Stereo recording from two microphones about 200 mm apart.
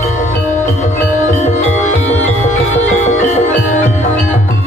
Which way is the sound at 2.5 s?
35° left (ahead or behind).